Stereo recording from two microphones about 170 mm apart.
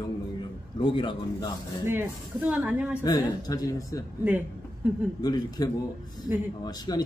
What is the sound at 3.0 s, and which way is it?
Speech, 20° left (ahead or behind).